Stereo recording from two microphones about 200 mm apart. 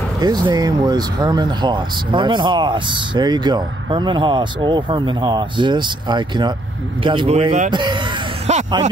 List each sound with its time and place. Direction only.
0.2 s speech: 20° right (ahead or behind); by 7.7 s 35° right (ahead or behind)
7.7 s speech: 25° right (ahead or behind)